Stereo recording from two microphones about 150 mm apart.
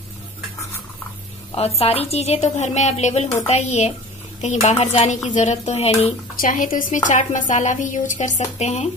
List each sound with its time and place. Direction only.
1.5 s speech: 40° left (ahead or behind)
6.3 s a woman's voice: 65° left (ahead or behind); by 8.8 s 50° left (ahead or behind)